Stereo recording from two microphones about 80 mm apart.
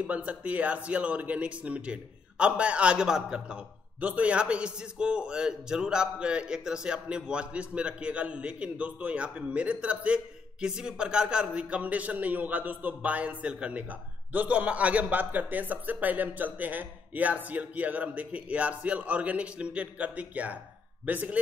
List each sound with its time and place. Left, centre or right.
0.0 s speech: centre